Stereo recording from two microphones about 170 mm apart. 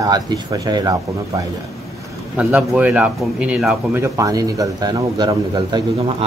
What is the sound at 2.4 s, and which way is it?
Speech, 10° right (ahead or behind).